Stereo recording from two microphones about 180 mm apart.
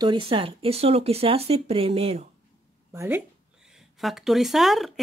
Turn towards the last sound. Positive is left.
turn(degrees=0)  # may be behind; listen again after turning